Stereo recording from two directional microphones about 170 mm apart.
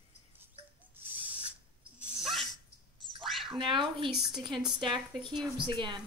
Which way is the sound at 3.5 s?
30° right (ahead or behind).